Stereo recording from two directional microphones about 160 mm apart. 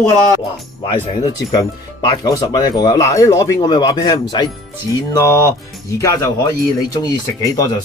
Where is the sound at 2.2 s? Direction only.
25° left (ahead or behind).